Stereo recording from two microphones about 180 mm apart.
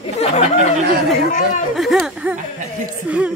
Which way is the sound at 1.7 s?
Centre (ahead or behind).